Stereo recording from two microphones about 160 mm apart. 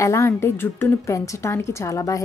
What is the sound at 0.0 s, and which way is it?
A woman's voice, 15° left (ahead or behind).